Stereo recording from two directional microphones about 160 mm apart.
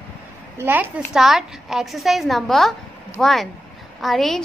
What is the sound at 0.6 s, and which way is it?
A woman's voice, 10° right (ahead or behind).